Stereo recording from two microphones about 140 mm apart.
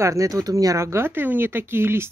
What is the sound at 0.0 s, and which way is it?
Speech, 20° right (ahead or behind).